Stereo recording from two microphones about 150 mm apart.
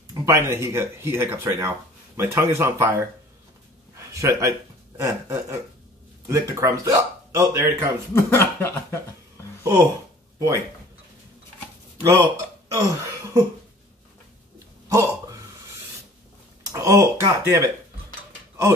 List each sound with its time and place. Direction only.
0.1 s a man's voice: 20° right (ahead or behind)
8.1 s speech: 15° left (ahead or behind)
9.6 s a sound: 20° right (ahead or behind)
12.0 s speech: 20° right (ahead or behind)
14.9 s a sound: 20° right (ahead or behind)
16.7 s speech: 20° right (ahead or behind)